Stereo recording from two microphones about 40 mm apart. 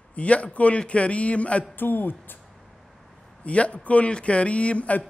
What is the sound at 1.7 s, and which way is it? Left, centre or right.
Speech, left.